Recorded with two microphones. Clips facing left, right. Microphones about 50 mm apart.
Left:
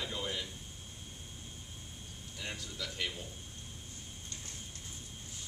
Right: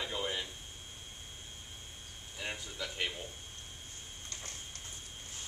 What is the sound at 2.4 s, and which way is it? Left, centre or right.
Speech, right.